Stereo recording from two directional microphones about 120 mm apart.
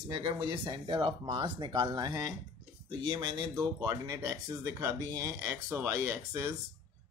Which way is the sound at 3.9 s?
30° right (ahead or behind).